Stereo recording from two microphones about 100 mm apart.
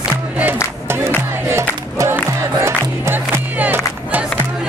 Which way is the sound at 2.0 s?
30° right (ahead or behind).